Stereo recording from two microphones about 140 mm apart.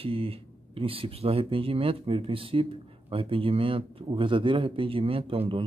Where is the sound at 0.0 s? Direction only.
40° right (ahead or behind).